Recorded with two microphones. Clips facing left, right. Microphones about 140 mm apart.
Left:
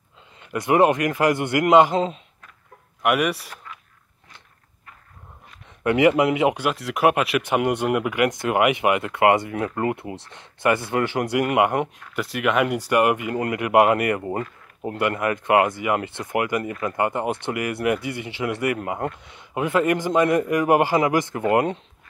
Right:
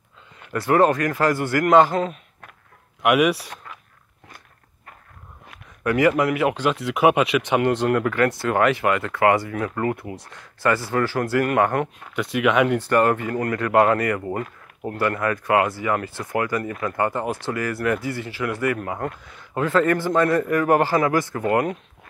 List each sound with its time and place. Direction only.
0.5 s speech: 15° left (ahead or behind)
3.0 s speech: centre (ahead or behind)
5.9 s speech: 20° left (ahead or behind)
6.6 s speech: centre (ahead or behind)
12.1 s speech: centre (ahead or behind); by 21.7 s 25° left (ahead or behind)